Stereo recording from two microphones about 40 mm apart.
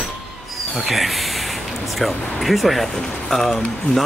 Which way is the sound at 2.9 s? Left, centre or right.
Centre.